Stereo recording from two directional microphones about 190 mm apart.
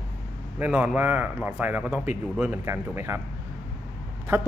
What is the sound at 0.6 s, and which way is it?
A man's voice, 10° right (ahead or behind).